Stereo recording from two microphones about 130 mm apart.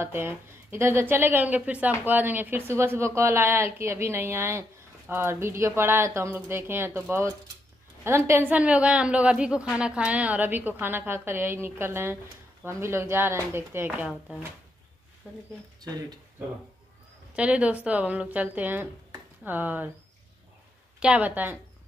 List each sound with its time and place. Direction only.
0.0 s a woman's voice: 15° right (ahead or behind)
15.2 s a woman's voice: 10° right (ahead or behind)
15.8 s speech: 30° right (ahead or behind)
17.3 s a woman's voice: 10° right (ahead or behind)
21.0 s a woman's voice: 10° right (ahead or behind)